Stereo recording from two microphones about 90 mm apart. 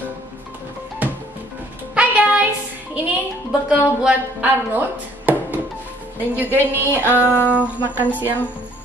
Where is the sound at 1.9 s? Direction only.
15° right (ahead or behind).